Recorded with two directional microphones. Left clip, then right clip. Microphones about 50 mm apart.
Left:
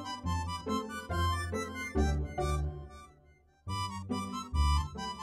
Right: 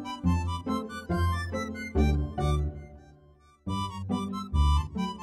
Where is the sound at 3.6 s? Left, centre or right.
Right.